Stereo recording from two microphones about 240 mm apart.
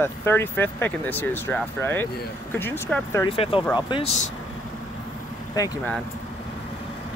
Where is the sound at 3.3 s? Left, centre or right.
Left.